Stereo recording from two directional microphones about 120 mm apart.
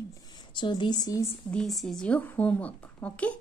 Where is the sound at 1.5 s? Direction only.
Centre (ahead or behind).